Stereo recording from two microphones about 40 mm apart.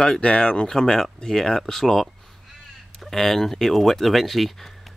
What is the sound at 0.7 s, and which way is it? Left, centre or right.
Speech, centre.